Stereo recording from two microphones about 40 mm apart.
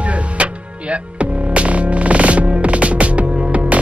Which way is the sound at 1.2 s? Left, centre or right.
Right.